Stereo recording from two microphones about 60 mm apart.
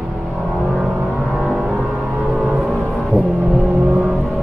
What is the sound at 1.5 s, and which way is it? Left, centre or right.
Music, centre.